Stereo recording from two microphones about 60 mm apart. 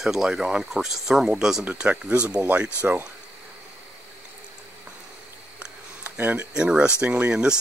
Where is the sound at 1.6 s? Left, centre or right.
Right.